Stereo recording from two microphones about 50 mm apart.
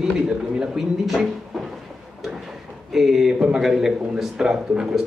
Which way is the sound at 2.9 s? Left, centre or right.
Centre.